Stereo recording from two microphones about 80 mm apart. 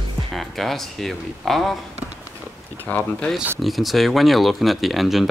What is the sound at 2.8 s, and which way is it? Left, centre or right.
Speech, left.